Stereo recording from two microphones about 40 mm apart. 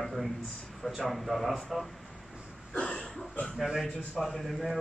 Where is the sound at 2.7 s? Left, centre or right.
Left.